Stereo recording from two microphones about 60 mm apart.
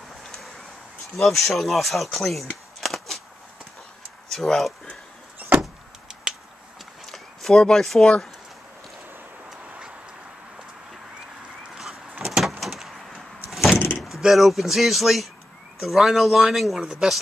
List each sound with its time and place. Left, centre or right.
1.1 s speech: centre
4.3 s speech: centre
5.6 s vehicle: centre
7.1 s walk: centre
7.6 s speech: centre
9.5 s a sound: centre
12.3 s vehicle: centre
13.7 s door: left
14.0 s speech: centre
16.8 s speech: centre